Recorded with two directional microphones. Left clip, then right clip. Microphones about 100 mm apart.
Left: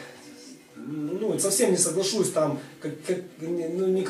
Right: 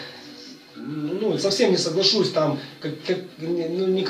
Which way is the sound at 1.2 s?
15° left (ahead or behind).